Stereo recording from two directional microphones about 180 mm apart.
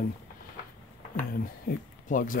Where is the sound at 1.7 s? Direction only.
55° left (ahead or behind).